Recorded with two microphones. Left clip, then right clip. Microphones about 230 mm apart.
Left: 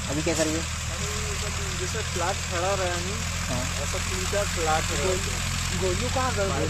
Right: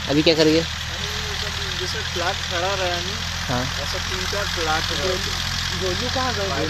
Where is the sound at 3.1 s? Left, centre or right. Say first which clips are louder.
Right 5 dB; left.